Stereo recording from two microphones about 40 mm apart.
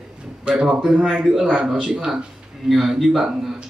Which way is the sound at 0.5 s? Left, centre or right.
Right.